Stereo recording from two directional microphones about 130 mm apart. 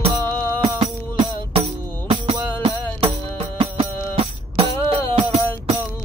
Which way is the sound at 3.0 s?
45° right (ahead or behind).